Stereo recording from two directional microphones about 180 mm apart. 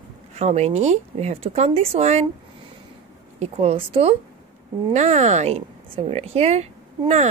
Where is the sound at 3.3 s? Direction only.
35° right (ahead or behind).